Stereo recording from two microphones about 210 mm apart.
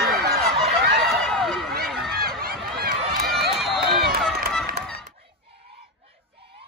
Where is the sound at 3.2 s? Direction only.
Centre (ahead or behind).